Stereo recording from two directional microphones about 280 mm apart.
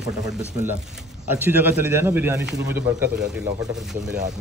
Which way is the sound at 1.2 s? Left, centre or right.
Centre.